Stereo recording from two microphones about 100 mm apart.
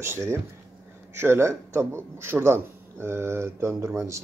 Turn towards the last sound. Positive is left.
turn(degrees=-30)  # may be behind; listen again after turning